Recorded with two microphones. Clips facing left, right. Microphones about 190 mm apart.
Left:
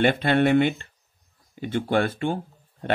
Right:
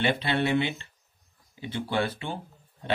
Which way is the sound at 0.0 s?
50° left (ahead or behind).